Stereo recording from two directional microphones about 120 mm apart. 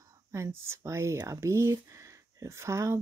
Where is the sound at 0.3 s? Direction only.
20° right (ahead or behind).